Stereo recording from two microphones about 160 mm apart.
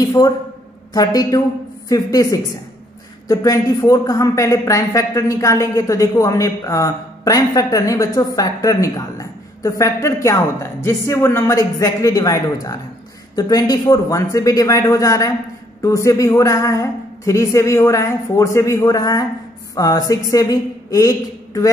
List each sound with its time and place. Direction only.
0.2 s a woman's voice: 25° left (ahead or behind)